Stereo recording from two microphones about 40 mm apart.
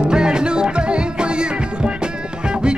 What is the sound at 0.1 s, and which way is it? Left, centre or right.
Music, right.